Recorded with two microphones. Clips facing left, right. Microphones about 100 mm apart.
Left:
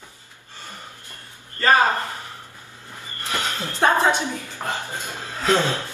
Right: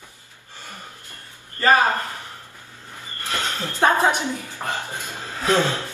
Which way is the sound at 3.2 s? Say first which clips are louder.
Even; 15° left (ahead or behind).